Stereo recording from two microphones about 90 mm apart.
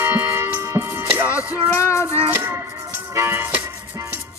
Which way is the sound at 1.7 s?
30° left (ahead or behind).